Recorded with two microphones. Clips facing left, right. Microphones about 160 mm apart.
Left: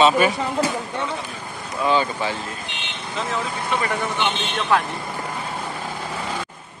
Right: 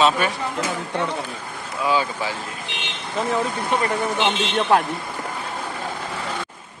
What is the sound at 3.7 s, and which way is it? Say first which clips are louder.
Speech: right 2 dB; 50° right (ahead or behind).